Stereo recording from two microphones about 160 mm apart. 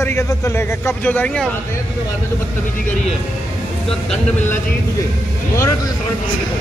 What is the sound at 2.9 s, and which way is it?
Speech, 45° left (ahead or behind).